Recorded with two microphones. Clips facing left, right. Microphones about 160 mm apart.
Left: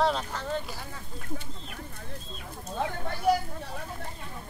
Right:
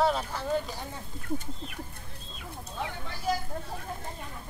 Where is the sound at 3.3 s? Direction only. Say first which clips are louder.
Left 6 dB; 65° left (ahead or behind).